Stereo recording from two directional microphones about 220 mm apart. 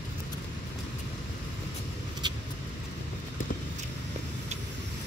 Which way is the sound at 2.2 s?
20° right (ahead or behind).